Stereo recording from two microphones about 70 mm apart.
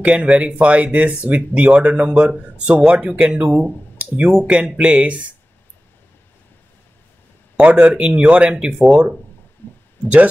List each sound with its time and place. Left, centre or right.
0.0 s speech: centre
7.5 s speech: centre